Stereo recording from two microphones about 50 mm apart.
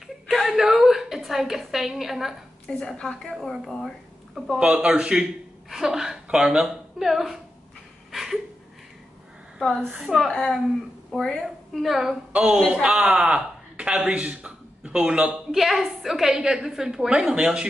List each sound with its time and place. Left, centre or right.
0.0 s a sound: centre
2.8 s a woman's voice: centre
4.6 s a man's voice: right; by 7.3 s centre
8.1 s a sound: centre
9.6 s a woman's voice: centre
9.9 s a woman's voice: centre
10.3 s a woman's voice: centre
11.4 s a woman's voice: centre
12.3 s a woman's voice: right
15.5 s a woman's voice: centre